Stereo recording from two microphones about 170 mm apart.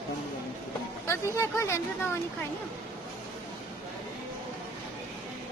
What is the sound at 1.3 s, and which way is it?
Speech, 15° left (ahead or behind).